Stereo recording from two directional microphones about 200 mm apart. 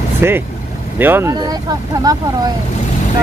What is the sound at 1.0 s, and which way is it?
Speech, 10° right (ahead or behind).